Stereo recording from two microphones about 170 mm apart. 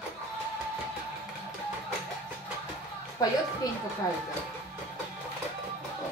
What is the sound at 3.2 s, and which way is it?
Speech, 20° left (ahead or behind).